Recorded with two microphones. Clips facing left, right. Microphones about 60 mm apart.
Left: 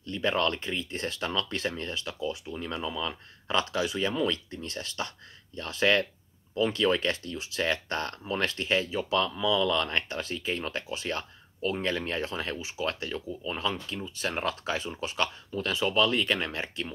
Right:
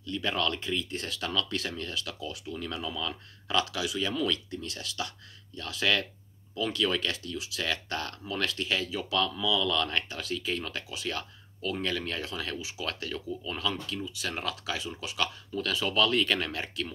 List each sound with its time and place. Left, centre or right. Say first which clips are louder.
0.0 s speech: left 3 dB; left